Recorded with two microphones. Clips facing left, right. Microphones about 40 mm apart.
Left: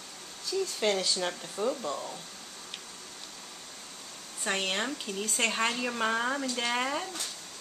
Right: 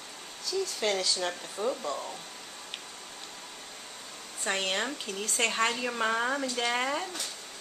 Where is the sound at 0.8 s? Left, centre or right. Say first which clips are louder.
Left 1 dB; centre.